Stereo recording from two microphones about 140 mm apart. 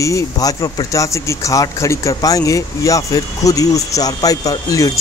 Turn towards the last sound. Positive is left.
turn(degrees=25)  # may be behind; listen again after turning